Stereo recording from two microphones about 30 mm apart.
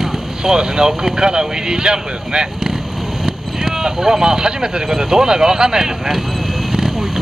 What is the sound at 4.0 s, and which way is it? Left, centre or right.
Speech, right.